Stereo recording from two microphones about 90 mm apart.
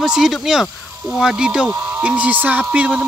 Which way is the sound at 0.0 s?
5° right (ahead or behind).